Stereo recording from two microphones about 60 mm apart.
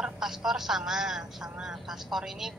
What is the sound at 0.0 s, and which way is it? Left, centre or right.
Speech, centre.